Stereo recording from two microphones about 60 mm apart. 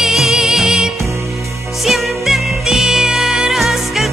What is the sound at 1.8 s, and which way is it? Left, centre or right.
Music, centre.